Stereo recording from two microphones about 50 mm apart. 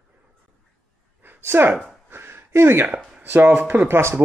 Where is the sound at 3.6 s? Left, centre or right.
Right.